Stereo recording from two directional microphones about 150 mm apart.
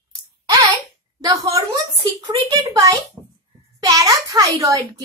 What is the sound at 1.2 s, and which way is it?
Speech, 20° right (ahead or behind).